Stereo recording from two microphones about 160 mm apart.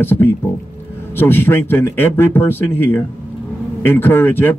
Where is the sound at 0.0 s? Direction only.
15° left (ahead or behind).